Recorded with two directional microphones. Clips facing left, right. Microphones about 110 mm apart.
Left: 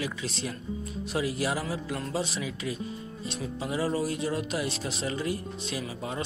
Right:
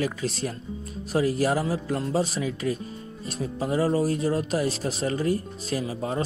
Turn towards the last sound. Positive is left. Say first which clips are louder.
# right 6 dB
turn(degrees=-35)  # may be behind; listen again after turning